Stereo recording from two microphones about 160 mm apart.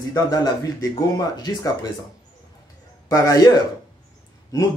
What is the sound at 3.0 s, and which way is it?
Speech, 20° left (ahead or behind).